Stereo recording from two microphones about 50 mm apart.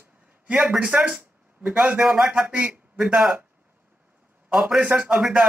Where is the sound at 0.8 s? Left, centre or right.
Right.